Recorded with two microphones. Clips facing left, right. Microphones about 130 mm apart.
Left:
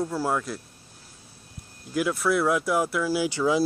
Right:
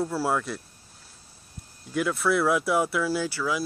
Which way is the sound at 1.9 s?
Centre (ahead or behind).